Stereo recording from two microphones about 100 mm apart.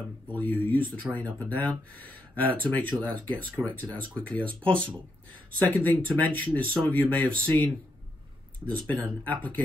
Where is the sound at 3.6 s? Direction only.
45° right (ahead or behind).